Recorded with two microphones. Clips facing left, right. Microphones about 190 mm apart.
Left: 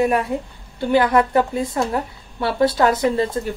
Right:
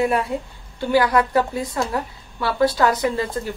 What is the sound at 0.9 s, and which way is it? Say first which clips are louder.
A woman's voice: left 2 dB; 25° left (ahead or behind).